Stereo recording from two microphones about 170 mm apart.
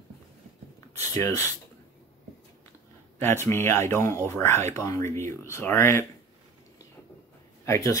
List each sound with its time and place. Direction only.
1.1 s speech: 20° left (ahead or behind)
3.2 s speech: 15° left (ahead or behind)
7.6 s speech: 15° left (ahead or behind)